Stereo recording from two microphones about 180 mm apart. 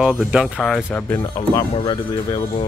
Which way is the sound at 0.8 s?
15° left (ahead or behind).